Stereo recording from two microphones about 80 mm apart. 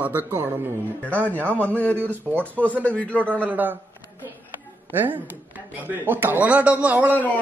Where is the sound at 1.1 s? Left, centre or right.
Centre.